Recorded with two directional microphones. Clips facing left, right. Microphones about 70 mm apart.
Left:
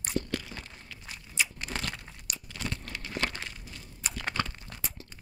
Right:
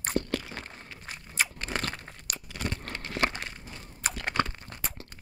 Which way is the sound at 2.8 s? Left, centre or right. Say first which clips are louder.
Right 3 dB; right.